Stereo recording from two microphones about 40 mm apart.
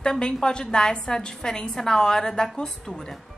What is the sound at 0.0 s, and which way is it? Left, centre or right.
A woman's voice, centre.